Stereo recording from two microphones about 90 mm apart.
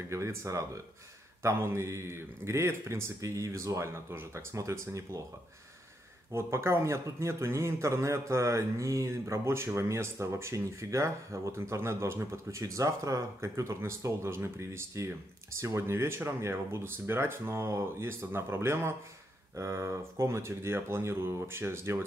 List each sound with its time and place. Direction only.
0.1 s a man's voice: 35° right (ahead or behind)
6.3 s a man's voice: 30° right (ahead or behind)